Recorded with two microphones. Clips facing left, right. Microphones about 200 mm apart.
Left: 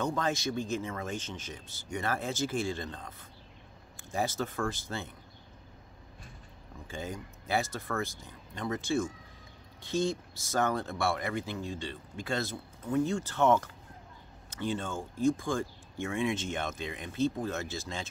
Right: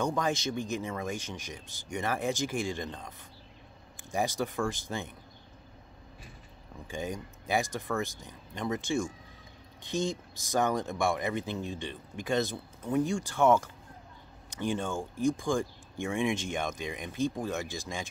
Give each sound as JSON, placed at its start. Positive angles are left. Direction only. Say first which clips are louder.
{"t": 0.0, "sound": "speech", "louder": "right 1 dB", "side_deg": -15}
{"t": 6.9, "sound": "speech", "louder": "right 3 dB", "side_deg": -15}